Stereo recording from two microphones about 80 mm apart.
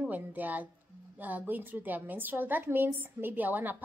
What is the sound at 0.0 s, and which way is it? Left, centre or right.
A woman's voice, right.